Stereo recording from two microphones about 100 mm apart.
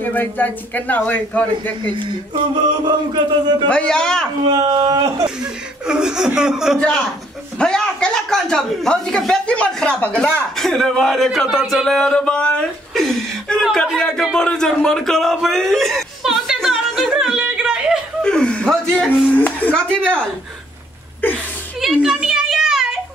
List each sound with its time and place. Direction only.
0.0 s speech: 20° left (ahead or behind)
2.0 s speech: 50° right (ahead or behind)
3.6 s speech: 10° left (ahead or behind)
4.5 s speech: 45° right (ahead or behind)
5.4 s speech: 10° right (ahead or behind)
7.5 s speech: 5° left (ahead or behind)
14.3 s a sound: 5° left (ahead or behind)
18.2 s speech: 10° left (ahead or behind)
19.3 s speech: 15° left (ahead or behind)
21.7 s a sound: 5° right (ahead or behind)